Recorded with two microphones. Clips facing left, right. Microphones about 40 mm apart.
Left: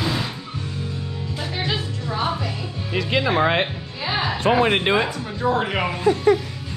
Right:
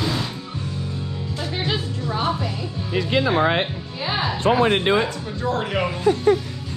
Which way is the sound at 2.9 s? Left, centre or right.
Left.